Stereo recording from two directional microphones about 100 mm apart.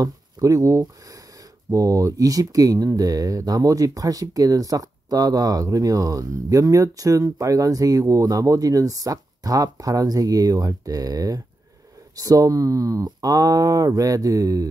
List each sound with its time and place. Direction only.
0.0 s speech: 35° right (ahead or behind)